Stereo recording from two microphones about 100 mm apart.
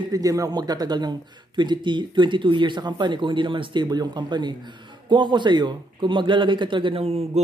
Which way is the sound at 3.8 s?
45° right (ahead or behind).